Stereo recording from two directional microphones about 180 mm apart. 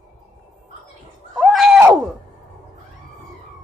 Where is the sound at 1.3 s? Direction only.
Centre (ahead or behind).